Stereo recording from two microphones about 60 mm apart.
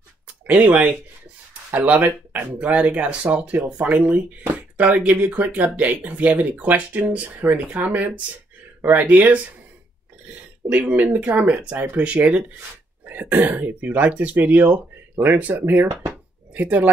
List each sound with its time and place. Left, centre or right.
0.5 s speech: right
10.7 s speech: right